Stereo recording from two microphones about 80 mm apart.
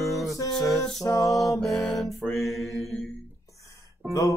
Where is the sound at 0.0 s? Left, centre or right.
Centre.